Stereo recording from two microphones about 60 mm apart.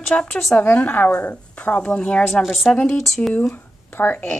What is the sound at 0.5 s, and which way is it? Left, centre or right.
Speech, left.